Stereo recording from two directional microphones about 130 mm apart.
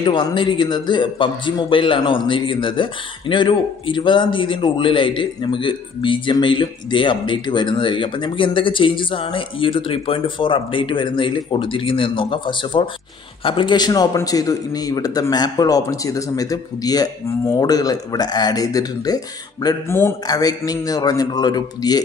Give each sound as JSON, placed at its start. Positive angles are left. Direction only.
{"t": 0.0, "sound": "a man's voice", "side_deg": 35}
{"t": 19.9, "sound": "speech", "side_deg": 20}
{"t": 20.2, "sound": "a man's voice", "side_deg": 30}